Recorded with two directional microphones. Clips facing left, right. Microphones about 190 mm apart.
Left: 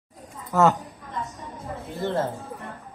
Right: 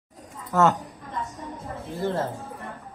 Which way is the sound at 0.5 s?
5° left (ahead or behind).